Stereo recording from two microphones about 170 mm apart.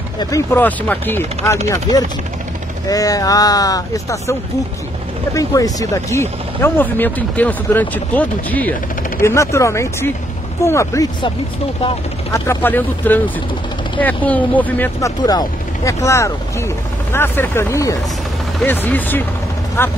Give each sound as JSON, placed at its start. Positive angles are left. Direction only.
{"t": 0.2, "sound": "speech", "side_deg": 15}
{"t": 12.3, "sound": "speech", "side_deg": 15}